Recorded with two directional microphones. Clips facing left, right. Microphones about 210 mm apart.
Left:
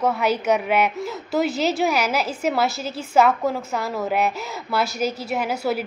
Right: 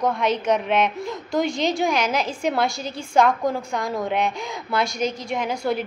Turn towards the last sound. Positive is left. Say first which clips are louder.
# left 1 dB
turn(degrees=5)  # may be behind; listen again after turning